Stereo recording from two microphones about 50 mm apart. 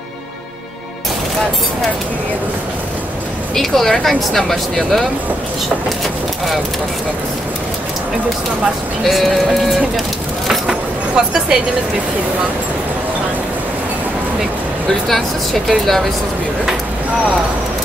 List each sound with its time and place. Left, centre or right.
3.5 s speech: centre
9.0 s speech: centre
11.1 s speech: centre
14.9 s speech: centre